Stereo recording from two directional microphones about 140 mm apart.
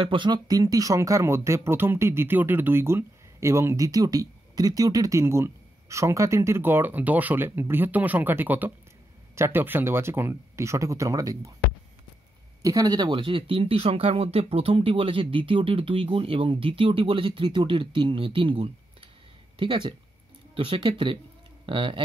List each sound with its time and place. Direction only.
0.0 s speech: 35° right (ahead or behind)
12.6 s speech: 25° right (ahead or behind)